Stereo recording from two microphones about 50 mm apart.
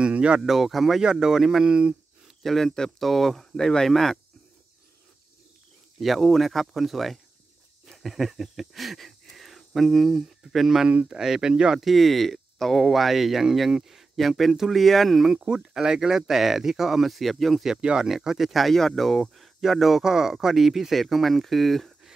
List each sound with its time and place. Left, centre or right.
0.0 s a sound: right
0.4 s speech: centre
2.4 s speech: centre
3.5 s speech: centre
5.9 s speech: centre
7.8 s wheeze: centre
11.1 s speech: centre
11.8 s speech: centre
15.3 s speech: centre
17.6 s speech: centre